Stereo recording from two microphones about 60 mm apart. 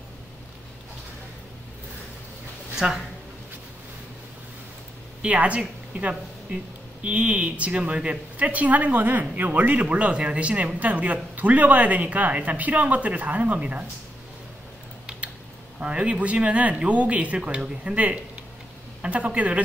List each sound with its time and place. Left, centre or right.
2.7 s speech: centre
5.2 s speech: right
15.8 s speech: centre